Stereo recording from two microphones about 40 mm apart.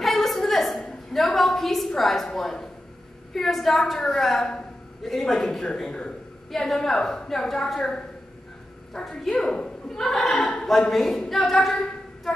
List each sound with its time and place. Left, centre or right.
0.0 s a sound: centre
3.3 s a woman's voice: centre
9.0 s a woman's voice: centre
9.8 s a woman's voice: centre